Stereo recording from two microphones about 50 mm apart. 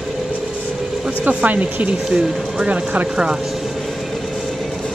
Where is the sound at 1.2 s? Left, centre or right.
Right.